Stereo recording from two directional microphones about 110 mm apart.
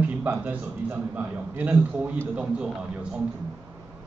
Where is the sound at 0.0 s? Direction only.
15° right (ahead or behind).